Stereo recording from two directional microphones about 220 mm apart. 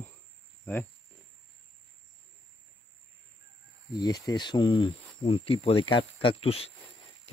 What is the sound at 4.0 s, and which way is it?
Speech, 15° left (ahead or behind).